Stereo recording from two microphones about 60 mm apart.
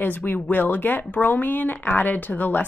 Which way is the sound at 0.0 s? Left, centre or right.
Left.